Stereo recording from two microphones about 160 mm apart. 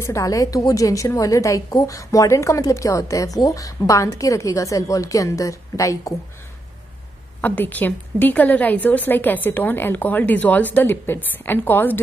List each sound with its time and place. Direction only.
0.0 s a woman's voice: 20° left (ahead or behind)
7.4 s a woman's voice: 10° left (ahead or behind)